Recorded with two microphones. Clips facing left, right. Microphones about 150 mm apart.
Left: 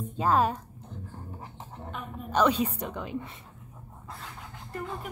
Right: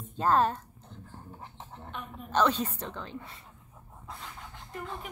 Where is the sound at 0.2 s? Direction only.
10° left (ahead or behind).